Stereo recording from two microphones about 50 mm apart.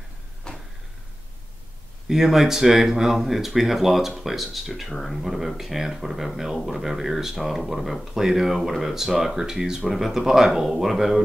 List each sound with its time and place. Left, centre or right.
0.5 s vehicle: centre
2.0 s speech: centre